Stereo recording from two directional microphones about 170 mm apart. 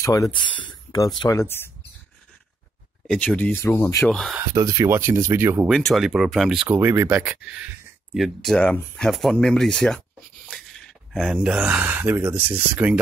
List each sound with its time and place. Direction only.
0.0 s speech: 20° left (ahead or behind)
3.1 s speech: 5° left (ahead or behind)
4.0 s speech: centre (ahead or behind)
4.4 s speech: 20° right (ahead or behind)
5.7 s speech: centre (ahead or behind)
11.1 s speech: 5° right (ahead or behind)